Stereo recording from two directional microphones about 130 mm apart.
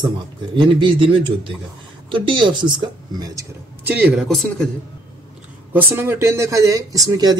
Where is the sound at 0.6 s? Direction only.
40° right (ahead or behind).